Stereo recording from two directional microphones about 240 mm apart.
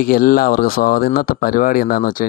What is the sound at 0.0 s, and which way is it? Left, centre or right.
Speech, left.